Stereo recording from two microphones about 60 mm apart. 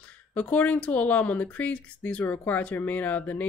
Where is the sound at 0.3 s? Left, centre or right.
Left.